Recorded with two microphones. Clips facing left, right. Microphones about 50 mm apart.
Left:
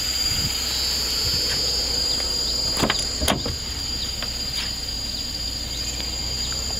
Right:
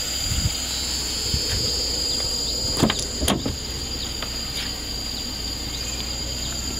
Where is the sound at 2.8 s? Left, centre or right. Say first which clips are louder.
Right 2 dB; left.